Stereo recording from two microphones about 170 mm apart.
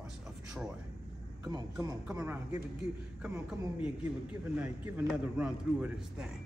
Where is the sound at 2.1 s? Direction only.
20° right (ahead or behind).